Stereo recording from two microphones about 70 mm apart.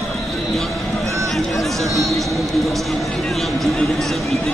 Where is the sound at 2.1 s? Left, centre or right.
Centre.